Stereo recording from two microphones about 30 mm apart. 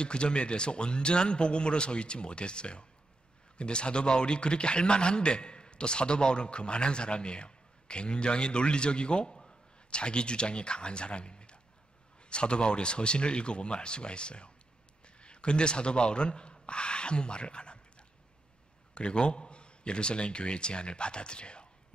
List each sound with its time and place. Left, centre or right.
0.0 s a man's voice: left
9.3 s a sound: left
9.8 s a man's voice: left